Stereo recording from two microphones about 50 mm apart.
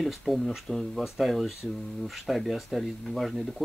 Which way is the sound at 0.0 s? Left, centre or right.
Centre.